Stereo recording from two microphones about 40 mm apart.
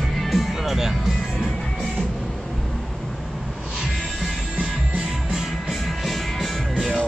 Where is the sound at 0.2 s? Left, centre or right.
Centre.